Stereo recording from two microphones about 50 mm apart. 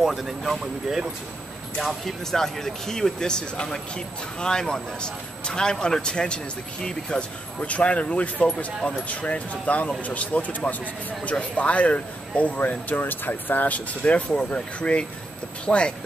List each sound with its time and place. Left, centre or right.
0.1 s speech: centre; by 15.9 s left